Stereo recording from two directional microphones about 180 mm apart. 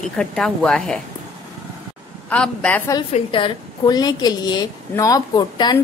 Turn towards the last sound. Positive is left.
turn(degrees=25)  # may be behind; listen again after turning